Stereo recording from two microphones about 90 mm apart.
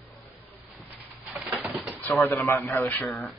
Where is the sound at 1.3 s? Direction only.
5° right (ahead or behind).